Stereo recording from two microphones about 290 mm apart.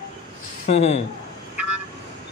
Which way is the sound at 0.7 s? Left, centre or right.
Left.